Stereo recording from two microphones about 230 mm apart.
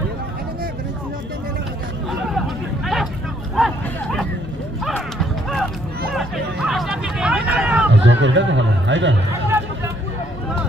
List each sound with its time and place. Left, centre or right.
2.3 s chatter: centre
3.5 s a sound: centre
6.1 s hubbub: centre
7.9 s speech: right